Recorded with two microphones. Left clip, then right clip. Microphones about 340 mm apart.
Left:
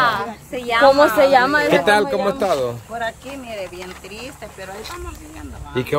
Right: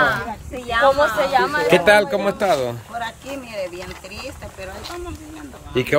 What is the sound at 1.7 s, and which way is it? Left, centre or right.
Speech, centre.